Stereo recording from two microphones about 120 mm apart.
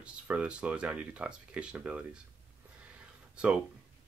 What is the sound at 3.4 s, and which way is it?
Speech, 10° right (ahead or behind).